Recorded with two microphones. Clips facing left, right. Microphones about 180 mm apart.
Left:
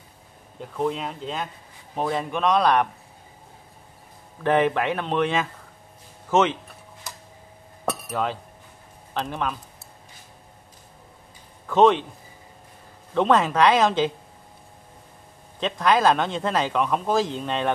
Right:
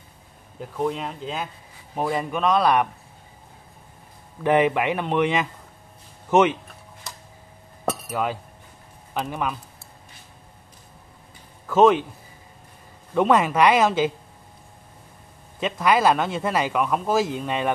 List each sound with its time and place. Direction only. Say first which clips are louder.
0.6 s speech: even; centre (ahead or behind)
4.4 s speech: right 1 dB; 10° right (ahead or behind)
8.1 s speech: right 1 dB; 10° right (ahead or behind)
11.6 s speech: right 1 dB; 5° right (ahead or behind)
13.1 s speech: right 1 dB; 10° right (ahead or behind)
15.6 s speech: even; 10° right (ahead or behind)